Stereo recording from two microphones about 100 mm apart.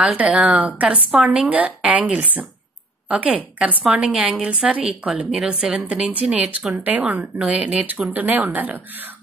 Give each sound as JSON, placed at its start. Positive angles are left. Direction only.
{"t": 0.0, "sound": "speech", "side_deg": -10}